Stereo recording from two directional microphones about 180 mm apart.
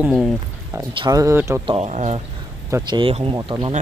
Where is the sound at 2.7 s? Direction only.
20° right (ahead or behind).